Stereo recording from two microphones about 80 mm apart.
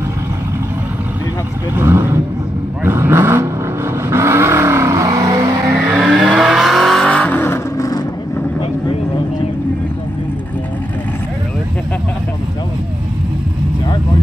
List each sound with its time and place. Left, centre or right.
1.8 s speech: right
2.8 s vehicle: right
5.9 s vehicle: centre
7.1 s vehicle: centre
7.7 s vehicle: left